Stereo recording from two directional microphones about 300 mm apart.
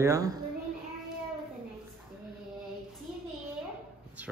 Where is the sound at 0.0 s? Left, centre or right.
Centre.